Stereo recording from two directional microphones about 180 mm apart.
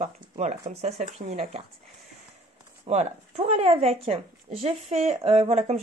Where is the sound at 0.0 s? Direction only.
40° right (ahead or behind).